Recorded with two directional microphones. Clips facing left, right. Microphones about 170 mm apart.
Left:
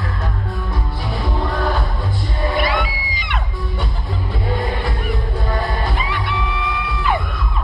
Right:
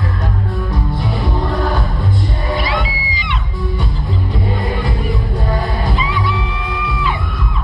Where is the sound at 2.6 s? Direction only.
50° left (ahead or behind).